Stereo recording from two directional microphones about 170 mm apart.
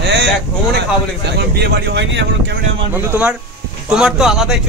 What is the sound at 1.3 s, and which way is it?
Speech, 75° right (ahead or behind).